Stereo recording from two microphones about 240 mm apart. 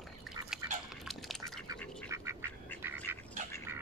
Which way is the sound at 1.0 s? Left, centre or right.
Centre.